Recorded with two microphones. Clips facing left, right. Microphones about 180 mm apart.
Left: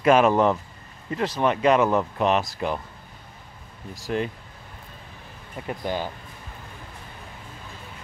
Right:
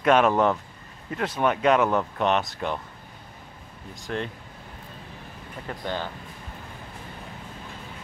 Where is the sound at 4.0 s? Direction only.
5° left (ahead or behind).